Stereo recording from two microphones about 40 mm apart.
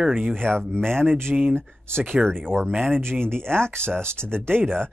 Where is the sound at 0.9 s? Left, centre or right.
Right.